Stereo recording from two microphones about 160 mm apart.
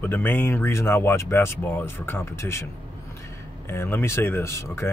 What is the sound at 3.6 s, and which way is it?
Speech, 15° left (ahead or behind).